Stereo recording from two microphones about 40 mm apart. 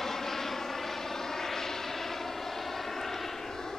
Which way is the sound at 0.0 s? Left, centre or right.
Centre.